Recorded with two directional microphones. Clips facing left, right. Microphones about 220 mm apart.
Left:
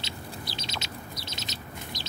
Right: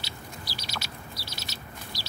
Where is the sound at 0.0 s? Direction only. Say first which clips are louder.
Left 3 dB; 20° left (ahead or behind).